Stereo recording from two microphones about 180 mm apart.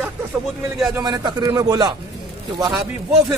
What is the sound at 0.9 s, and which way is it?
Speech, 20° right (ahead or behind).